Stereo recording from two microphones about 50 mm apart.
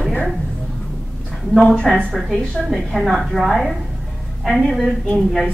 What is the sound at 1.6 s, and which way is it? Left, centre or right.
Speech, centre.